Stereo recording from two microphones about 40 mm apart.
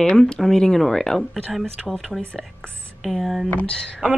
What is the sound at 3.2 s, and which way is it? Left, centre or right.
Speech, centre.